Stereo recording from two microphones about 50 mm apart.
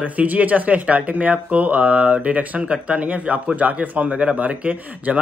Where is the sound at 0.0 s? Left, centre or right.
Right.